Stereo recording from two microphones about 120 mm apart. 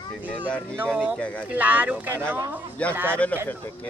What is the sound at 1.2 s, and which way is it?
Speech, 10° left (ahead or behind).